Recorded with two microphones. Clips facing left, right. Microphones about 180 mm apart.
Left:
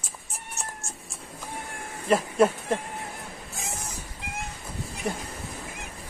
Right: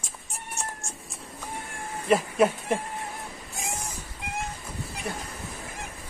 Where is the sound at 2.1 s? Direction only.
Centre (ahead or behind).